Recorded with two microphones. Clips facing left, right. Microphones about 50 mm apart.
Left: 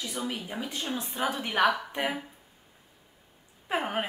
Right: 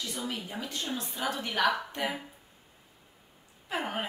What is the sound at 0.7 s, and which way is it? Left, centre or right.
Speech, left.